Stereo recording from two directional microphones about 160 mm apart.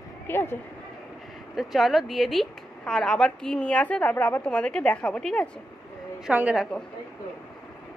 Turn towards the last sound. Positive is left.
turn(degrees=-5)  # may be behind; listen again after turning